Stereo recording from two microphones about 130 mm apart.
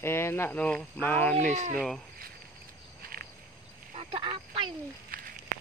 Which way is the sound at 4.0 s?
45° right (ahead or behind).